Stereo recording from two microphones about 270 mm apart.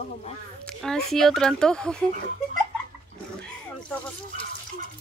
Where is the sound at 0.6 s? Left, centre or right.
Centre.